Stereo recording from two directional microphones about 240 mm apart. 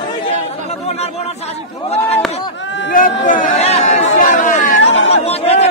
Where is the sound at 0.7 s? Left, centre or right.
Left.